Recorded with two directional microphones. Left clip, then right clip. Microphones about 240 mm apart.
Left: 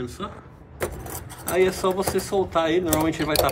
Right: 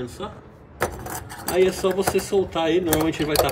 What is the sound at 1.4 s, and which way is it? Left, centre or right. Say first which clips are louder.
Speech: right 1 dB; left.